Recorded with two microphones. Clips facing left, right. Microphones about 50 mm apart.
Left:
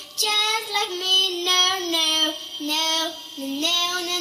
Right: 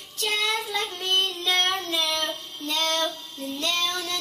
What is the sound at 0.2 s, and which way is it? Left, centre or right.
Child singing, left.